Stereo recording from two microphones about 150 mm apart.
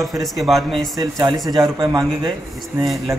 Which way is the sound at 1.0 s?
25° right (ahead or behind).